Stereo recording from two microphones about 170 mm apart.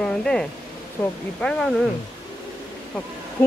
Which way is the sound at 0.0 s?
5° left (ahead or behind).